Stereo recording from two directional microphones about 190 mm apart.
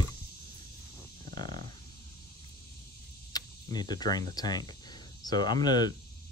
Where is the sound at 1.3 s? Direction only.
25° left (ahead or behind).